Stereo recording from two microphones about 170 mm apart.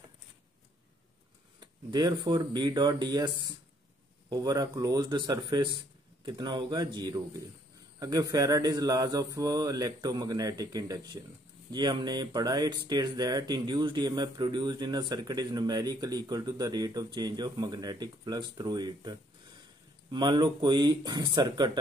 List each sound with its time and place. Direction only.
1.6 s speech: 25° right (ahead or behind)